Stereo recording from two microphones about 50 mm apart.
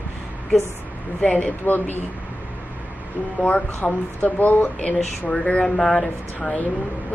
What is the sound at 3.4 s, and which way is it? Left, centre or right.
Speech, left.